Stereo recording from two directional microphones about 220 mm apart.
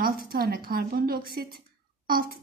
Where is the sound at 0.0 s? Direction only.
40° right (ahead or behind).